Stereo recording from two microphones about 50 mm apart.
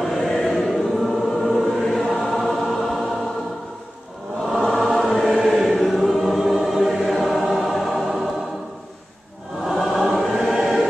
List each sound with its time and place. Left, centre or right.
0.3 s choir: centre
4.5 s choir: centre
9.7 s choir: centre